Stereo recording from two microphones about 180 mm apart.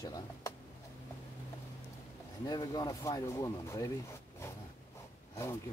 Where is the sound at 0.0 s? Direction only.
20° left (ahead or behind).